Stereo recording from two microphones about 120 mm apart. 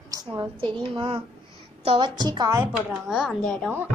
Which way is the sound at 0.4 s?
45° right (ahead or behind).